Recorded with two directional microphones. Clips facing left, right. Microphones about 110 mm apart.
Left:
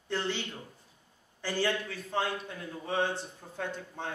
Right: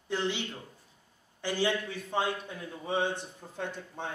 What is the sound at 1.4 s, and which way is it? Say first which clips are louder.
A man's voice: right 1 dB; 15° right (ahead or behind).